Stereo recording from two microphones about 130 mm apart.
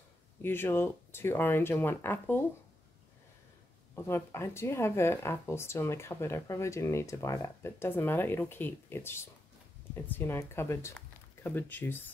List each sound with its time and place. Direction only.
0.4 s speech: 15° left (ahead or behind)
3.9 s speech: 20° left (ahead or behind)